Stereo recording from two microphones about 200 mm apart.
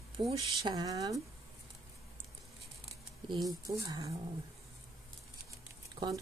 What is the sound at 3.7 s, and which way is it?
Speech, 20° right (ahead or behind).